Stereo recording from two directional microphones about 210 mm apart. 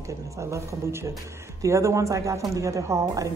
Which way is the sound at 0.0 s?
15° right (ahead or behind).